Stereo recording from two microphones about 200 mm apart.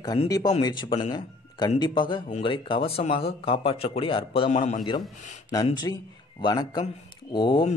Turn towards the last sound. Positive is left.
turn(degrees=25)  # may be behind; listen again after turning